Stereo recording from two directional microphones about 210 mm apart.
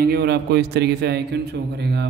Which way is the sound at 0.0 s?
50° right (ahead or behind).